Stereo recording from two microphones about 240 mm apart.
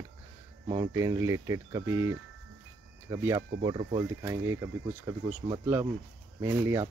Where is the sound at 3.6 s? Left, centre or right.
Right.